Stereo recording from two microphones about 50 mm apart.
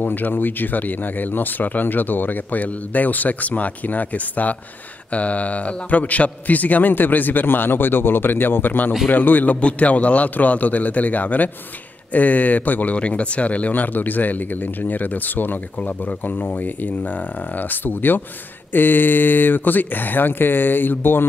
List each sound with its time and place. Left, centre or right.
0.0 s speech: left